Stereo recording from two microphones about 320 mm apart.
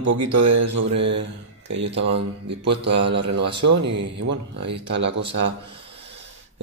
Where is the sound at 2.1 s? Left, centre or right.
Right.